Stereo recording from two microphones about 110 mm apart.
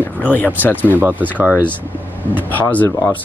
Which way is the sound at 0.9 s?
15° right (ahead or behind).